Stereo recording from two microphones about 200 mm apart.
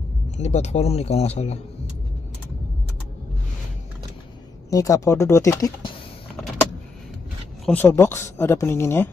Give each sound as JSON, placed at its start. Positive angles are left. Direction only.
{"t": 0.4, "sound": "speech", "side_deg": 35}
{"t": 4.6, "sound": "speech", "side_deg": 15}
{"t": 7.6, "sound": "speech", "side_deg": 10}